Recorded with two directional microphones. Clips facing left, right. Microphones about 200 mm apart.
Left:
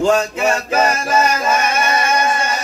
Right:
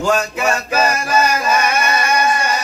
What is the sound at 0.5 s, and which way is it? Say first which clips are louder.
Music: even; 25° left (ahead or behind).